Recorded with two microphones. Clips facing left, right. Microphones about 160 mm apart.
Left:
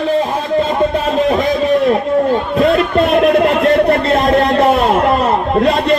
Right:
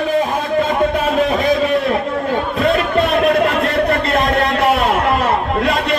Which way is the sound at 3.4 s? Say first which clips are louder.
Left 5 dB; 35° left (ahead or behind).